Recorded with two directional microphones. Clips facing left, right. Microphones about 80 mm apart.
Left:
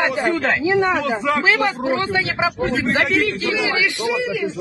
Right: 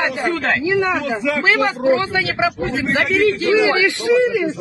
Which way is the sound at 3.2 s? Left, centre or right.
Right.